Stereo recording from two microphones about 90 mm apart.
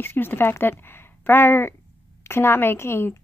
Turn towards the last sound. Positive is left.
turn(degrees=30)  # may be behind; listen again after turning